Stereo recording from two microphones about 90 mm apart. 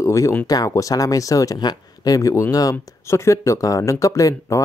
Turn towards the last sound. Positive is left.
turn(degrees=40)  # may be behind; listen again after turning